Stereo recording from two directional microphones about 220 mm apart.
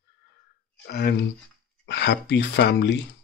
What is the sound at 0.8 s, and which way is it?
Speech, 45° left (ahead or behind).